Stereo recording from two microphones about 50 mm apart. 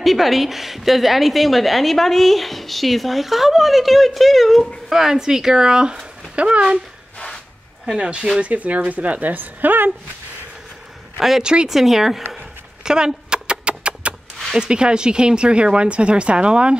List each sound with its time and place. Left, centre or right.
0.0 s a woman's voice: centre; by 6.8 s right
8.0 s a woman's voice: right
11.1 s speech: centre
11.4 s speech: centre
11.7 s a woman's voice: centre
12.8 s a sound: centre
14.6 s speech: centre